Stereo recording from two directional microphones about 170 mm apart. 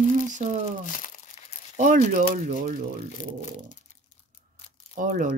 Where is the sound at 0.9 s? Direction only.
50° left (ahead or behind).